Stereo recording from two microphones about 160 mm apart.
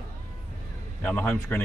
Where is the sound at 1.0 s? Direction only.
10° left (ahead or behind).